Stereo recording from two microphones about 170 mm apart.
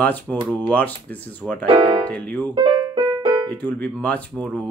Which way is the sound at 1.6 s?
30° right (ahead or behind).